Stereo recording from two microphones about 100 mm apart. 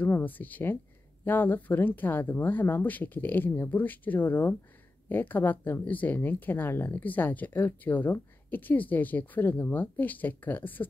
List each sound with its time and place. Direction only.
0.0 s speech: 20° left (ahead or behind)